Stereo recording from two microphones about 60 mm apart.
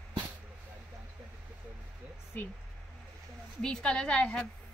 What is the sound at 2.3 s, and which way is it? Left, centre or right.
Speech, left.